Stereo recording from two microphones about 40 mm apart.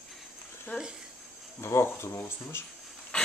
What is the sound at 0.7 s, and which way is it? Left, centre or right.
Speech, left.